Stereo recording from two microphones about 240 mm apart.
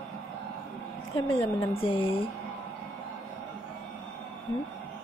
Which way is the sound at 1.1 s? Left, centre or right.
Left.